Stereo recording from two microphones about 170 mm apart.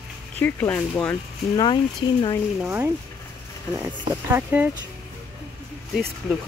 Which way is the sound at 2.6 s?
10° right (ahead or behind).